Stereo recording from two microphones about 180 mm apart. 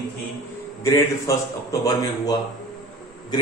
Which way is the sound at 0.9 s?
20° left (ahead or behind).